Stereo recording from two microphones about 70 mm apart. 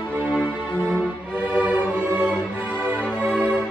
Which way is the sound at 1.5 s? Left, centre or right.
Centre.